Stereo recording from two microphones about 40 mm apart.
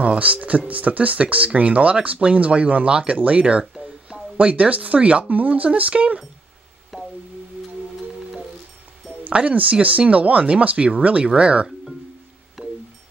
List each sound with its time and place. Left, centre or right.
0.0 s speech: right
6.9 s a sound: centre
9.3 s speech: right
12.6 s music: centre